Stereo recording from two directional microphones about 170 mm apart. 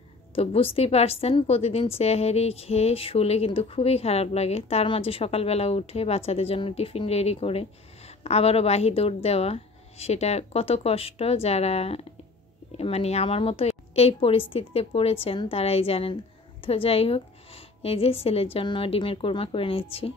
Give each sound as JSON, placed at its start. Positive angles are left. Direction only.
{"t": 0.3, "sound": "a woman's voice", "side_deg": 35}